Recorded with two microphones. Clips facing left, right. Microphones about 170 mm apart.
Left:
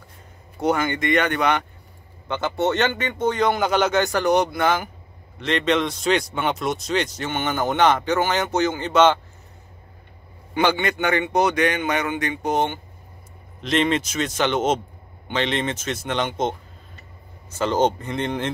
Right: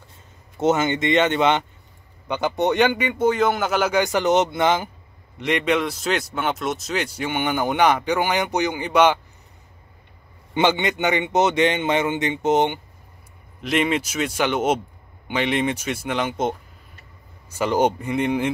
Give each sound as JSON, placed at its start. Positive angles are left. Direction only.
{"t": 0.6, "sound": "a man's voice", "side_deg": -25}
{"t": 5.4, "sound": "speech", "side_deg": -10}
{"t": 10.5, "sound": "a man's voice", "side_deg": -20}
{"t": 13.6, "sound": "speech", "side_deg": -5}
{"t": 17.6, "sound": "speech", "side_deg": -10}